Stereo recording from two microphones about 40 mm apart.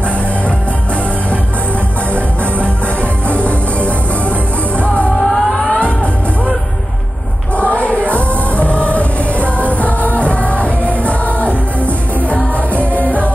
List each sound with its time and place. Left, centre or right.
3.0 s music: left
5.2 s music: centre
7.5 s music: left
11.4 s music: right